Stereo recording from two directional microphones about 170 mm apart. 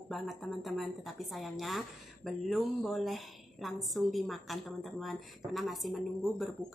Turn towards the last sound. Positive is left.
turn(degrees=0)  # may be behind; listen again after turning